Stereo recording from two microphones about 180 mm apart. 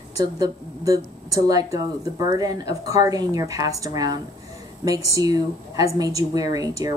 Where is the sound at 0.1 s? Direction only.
20° right (ahead or behind).